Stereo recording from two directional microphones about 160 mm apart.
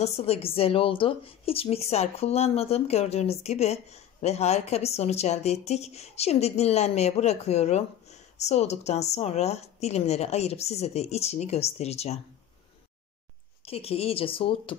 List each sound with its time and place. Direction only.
0.0 s a woman's voice: 40° left (ahead or behind)
13.7 s a woman's voice: 40° left (ahead or behind)